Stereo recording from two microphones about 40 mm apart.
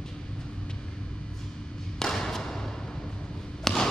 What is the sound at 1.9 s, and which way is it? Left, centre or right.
Thump, centre.